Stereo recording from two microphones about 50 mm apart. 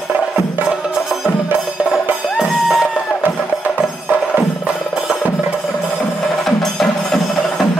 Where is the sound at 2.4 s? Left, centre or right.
Centre.